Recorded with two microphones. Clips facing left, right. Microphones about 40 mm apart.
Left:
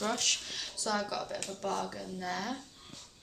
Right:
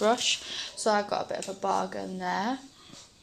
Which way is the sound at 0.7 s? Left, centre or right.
Right.